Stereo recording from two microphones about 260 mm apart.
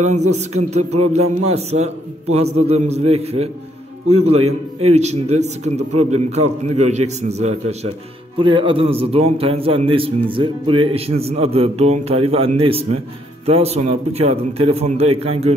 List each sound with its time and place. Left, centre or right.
0.3 s a man's voice: right